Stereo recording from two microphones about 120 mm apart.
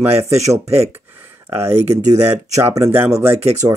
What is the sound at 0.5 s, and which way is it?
Speech, 20° right (ahead or behind).